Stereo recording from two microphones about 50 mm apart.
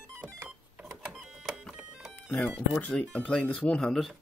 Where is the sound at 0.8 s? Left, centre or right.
Centre.